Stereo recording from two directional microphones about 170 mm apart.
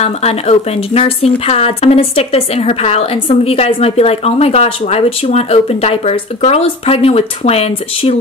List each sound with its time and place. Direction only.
0.0 s speech: 40° left (ahead or behind)